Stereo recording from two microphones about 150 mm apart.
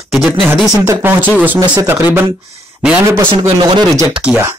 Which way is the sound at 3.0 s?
25° right (ahead or behind).